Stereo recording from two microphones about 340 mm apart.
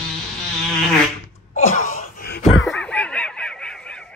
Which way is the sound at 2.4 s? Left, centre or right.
Centre.